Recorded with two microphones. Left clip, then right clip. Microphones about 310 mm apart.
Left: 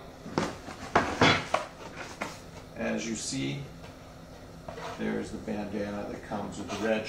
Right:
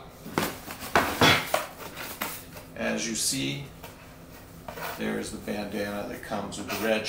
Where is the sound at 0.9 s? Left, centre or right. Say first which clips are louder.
Right 3 dB; centre.